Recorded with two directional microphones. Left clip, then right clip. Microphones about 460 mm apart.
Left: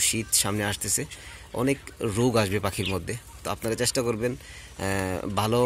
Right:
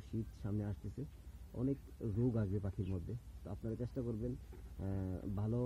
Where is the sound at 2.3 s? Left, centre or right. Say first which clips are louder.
Left 19 dB; centre.